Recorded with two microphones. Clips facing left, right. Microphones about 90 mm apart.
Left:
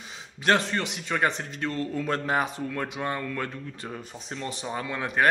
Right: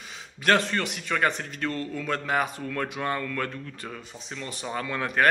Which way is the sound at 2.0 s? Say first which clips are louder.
Left 1 dB; 30° left (ahead or behind).